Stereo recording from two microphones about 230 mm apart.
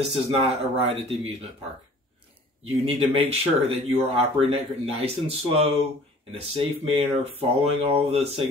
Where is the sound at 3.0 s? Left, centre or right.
Right.